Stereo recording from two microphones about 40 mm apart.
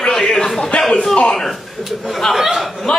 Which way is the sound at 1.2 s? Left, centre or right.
Centre.